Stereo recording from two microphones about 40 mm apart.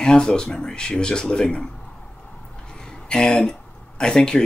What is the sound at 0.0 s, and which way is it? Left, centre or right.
Speech, centre.